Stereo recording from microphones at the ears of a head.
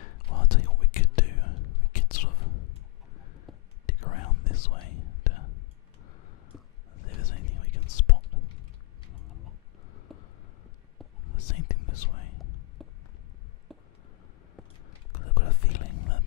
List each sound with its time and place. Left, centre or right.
0.0 s whispering: left
7.0 s whispering: left
11.2 s whispering: left
14.9 s whispering: left